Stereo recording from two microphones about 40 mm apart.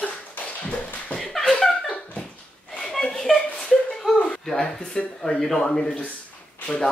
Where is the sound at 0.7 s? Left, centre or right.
Left.